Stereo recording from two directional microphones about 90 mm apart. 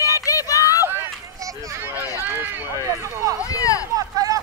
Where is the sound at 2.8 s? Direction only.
40° right (ahead or behind).